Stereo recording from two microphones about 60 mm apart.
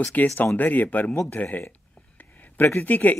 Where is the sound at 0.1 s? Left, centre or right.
Left.